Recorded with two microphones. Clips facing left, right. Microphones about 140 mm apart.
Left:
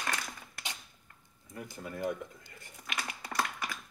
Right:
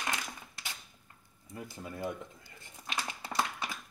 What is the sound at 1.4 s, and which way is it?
Speech, 25° right (ahead or behind).